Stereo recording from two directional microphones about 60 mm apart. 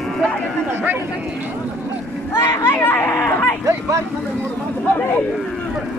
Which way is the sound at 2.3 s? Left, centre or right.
Left.